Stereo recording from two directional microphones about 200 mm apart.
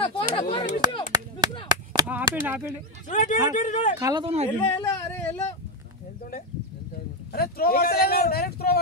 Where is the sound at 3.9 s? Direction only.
15° right (ahead or behind).